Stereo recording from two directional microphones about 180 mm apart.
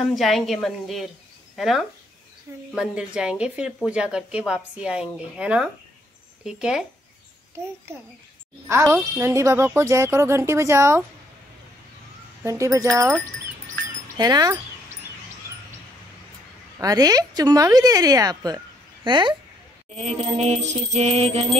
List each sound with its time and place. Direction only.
0.1 s speech: centre (ahead or behind)
7.9 s speech: 15° right (ahead or behind)
12.4 s speech: 15° right (ahead or behind)
16.7 s a woman's voice: 20° right (ahead or behind)
19.9 s music: 35° right (ahead or behind)